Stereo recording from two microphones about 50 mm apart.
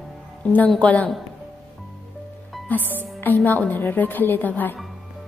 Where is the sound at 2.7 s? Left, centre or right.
Left.